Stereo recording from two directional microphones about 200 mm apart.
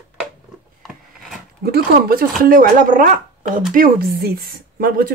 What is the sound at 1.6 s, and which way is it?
Speech, 50° right (ahead or behind).